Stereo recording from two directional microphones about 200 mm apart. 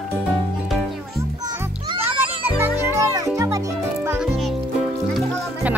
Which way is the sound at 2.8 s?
15° right (ahead or behind).